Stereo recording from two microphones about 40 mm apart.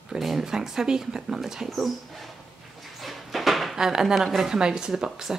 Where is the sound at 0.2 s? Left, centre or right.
Centre.